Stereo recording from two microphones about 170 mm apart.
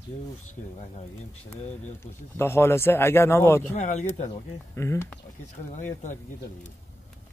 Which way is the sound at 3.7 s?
45° left (ahead or behind).